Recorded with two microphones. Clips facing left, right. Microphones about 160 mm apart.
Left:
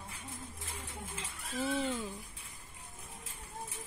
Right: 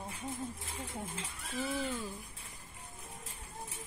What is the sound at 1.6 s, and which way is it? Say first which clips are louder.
Speech: left 2 dB; 25° left (ahead or behind).